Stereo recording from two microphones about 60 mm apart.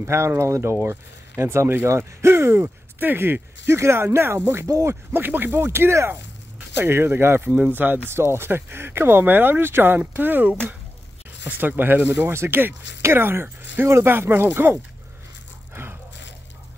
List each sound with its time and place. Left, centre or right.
0.0 s speech: right
3.0 s speech: right
5.1 s speech: right
5.6 s speech: right
7.5 s speech: right
15.7 s gasp: right